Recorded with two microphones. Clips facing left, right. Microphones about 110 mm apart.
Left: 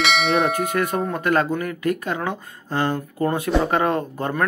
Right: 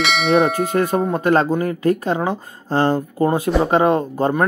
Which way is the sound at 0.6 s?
25° right (ahead or behind).